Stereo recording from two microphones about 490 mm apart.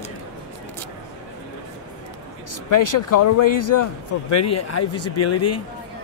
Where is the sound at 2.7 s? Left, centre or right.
Left.